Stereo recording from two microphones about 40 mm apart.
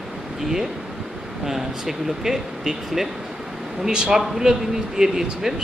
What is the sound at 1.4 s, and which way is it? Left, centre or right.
Speech, centre.